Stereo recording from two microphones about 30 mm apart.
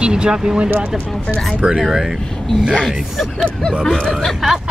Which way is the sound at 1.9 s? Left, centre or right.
Centre.